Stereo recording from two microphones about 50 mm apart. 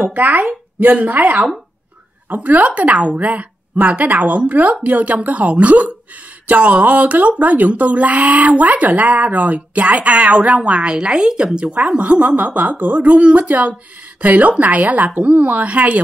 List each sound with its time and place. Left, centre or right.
0.0 s speech: right